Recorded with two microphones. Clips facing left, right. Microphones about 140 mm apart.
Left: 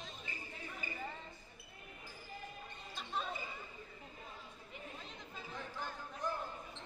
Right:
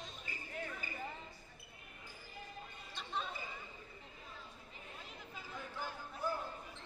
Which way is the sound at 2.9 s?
Centre (ahead or behind).